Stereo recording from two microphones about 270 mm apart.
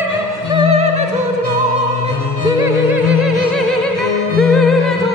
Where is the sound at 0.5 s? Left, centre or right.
Right.